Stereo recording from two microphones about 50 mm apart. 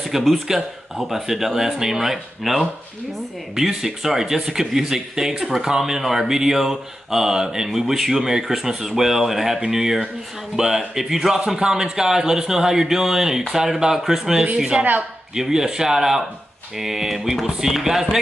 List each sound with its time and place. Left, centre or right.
0.0 s speech: centre
14.8 s a woman's voice: right
15.3 s speech: centre